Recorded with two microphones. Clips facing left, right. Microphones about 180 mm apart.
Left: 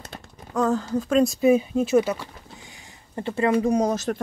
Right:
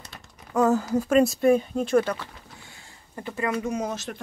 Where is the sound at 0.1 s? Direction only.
30° left (ahead or behind).